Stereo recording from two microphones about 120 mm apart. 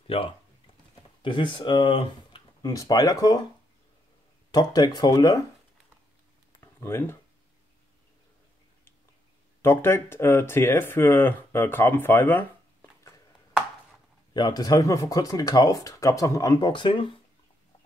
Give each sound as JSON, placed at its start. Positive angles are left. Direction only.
{"t": 0.0, "sound": "speech", "side_deg": 50}
{"t": 2.7, "sound": "speech", "side_deg": 30}
{"t": 4.5, "sound": "speech", "side_deg": 35}
{"t": 6.6, "sound": "speech", "side_deg": 20}
{"t": 9.6, "sound": "speech", "side_deg": 20}
{"t": 14.3, "sound": "speech", "side_deg": 35}